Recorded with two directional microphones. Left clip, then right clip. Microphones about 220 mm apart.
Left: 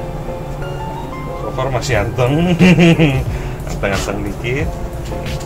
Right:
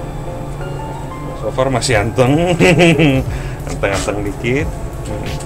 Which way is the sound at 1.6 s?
55° right (ahead or behind).